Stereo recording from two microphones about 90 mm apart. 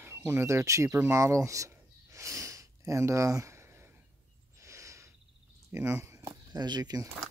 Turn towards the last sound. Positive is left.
turn(degrees=-50)  # may be behind; listen again after turning